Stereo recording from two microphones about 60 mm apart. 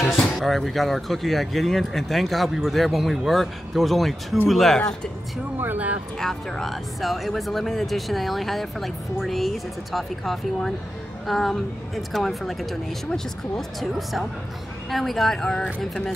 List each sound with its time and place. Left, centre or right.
0.1 s speech: centre
5.6 s speech: right
6.1 s speech: centre